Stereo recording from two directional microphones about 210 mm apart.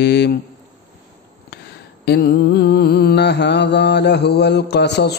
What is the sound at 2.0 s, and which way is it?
Mantra, 50° left (ahead or behind).